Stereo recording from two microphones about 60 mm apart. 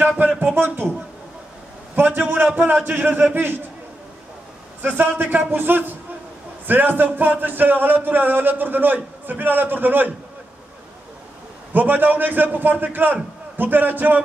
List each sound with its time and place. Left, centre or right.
0.2 s speech: right
2.0 s speech: right
4.8 s speech: right
11.7 s speech: right